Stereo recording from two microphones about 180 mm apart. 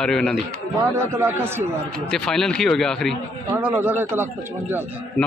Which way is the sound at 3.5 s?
10° right (ahead or behind).